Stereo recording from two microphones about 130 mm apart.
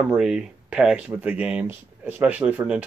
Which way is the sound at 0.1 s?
5° right (ahead or behind).